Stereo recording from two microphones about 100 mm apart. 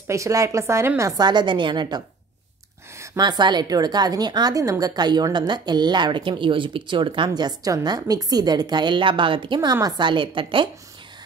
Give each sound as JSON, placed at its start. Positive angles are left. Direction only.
{"t": 0.1, "sound": "a woman's voice", "side_deg": -30}
{"t": 1.2, "sound": "a woman's voice", "side_deg": -50}
{"t": 3.2, "sound": "a woman's voice", "side_deg": -45}
{"t": 7.2, "sound": "a woman's voice", "side_deg": -40}